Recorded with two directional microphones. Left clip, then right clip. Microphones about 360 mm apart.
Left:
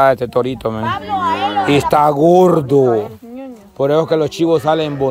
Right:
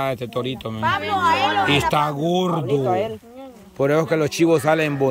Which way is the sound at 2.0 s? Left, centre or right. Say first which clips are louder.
Left 11 dB; left.